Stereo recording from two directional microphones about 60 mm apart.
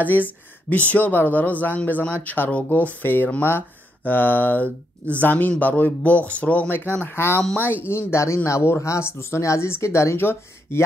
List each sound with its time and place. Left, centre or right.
0.0 s speech: left
6.7 s speech: left